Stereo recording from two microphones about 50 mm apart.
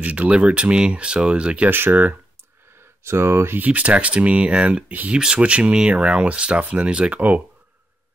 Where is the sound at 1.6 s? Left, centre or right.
Right.